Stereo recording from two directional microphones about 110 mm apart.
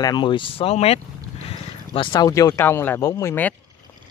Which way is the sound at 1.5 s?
55° left (ahead or behind).